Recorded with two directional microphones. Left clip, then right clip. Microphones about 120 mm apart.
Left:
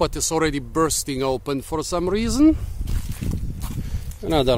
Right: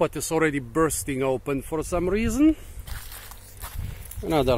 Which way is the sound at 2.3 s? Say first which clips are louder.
Left 5 dB; 55° left (ahead or behind).